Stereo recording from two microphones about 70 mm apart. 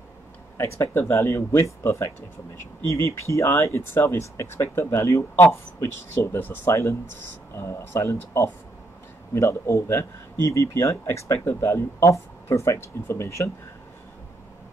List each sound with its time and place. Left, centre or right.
0.6 s speech: left
11.3 s speech: left